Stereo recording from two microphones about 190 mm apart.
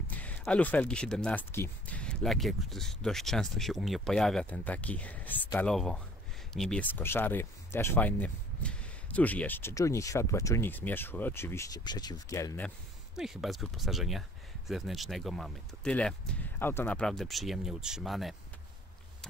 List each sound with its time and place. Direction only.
0.1 s speech: 10° left (ahead or behind)
13.1 s speech: centre (ahead or behind)